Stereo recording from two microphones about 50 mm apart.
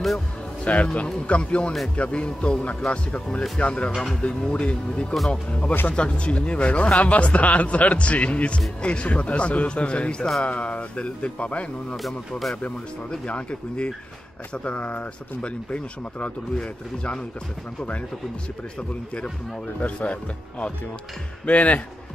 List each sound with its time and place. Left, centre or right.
0.7 s speech: left
12.0 s speech: centre
13.1 s speech: left
19.8 s speech: left